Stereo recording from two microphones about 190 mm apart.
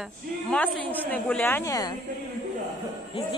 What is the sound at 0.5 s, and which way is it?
A woman's voice, 10° left (ahead or behind).